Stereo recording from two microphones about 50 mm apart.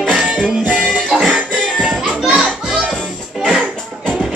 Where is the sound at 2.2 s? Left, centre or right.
Centre.